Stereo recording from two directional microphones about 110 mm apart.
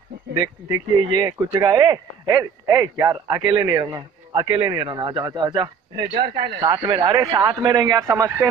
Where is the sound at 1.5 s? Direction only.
35° right (ahead or behind).